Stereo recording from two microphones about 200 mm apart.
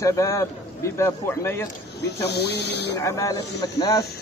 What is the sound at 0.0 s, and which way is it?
Speech, 15° left (ahead or behind).